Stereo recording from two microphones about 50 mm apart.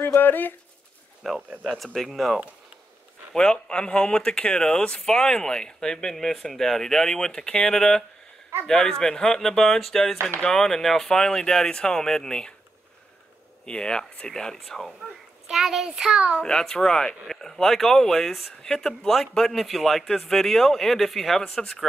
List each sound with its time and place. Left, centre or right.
0.0 s speech: left
1.5 s speech: right
2.0 s speech: centre
3.3 s speech: centre
13.7 s speech: centre
15.4 s a child's voice: centre
16.4 s speech: centre
21.4 s speech: centre